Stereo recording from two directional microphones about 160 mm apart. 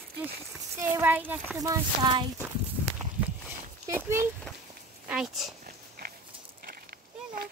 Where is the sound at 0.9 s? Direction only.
10° right (ahead or behind).